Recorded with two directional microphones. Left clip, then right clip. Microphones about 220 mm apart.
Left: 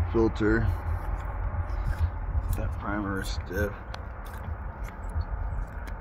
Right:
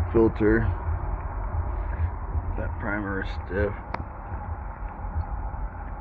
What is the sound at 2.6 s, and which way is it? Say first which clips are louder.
Speech: right 2 dB; 30° left (ahead or behind).